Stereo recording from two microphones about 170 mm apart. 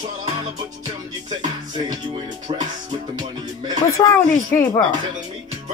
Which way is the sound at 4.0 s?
20° left (ahead or behind).